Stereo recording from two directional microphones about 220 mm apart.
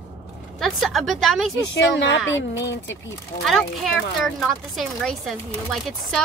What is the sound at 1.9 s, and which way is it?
A woman's voice, 55° left (ahead or behind).